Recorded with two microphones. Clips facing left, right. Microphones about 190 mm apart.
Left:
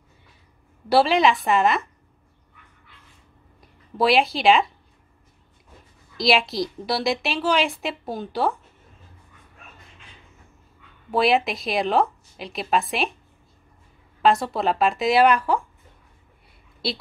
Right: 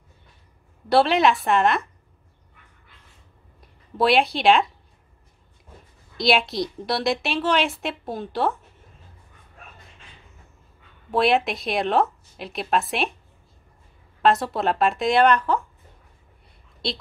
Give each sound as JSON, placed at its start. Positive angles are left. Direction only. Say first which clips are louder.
{"t": 0.8, "sound": "a woman's voice", "louder": "even", "side_deg": 0}
{"t": 3.6, "sound": "a woman's voice", "louder": "even", "side_deg": 0}
{"t": 6.1, "sound": "a woman's voice", "louder": "even", "side_deg": 0}
{"t": 11.1, "sound": "a woman's voice", "louder": "even", "side_deg": 0}
{"t": 14.2, "sound": "a woman's voice", "louder": "even", "side_deg": 0}